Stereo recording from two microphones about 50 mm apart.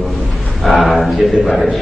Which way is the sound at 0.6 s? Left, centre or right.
Centre.